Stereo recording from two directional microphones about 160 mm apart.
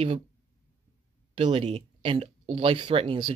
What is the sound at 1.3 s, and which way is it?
Speech, 40° right (ahead or behind).